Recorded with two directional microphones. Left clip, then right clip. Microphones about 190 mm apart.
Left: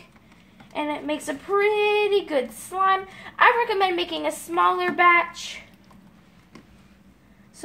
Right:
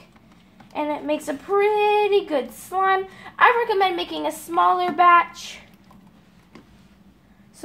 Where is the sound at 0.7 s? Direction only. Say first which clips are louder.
Right 3 dB; 15° right (ahead or behind).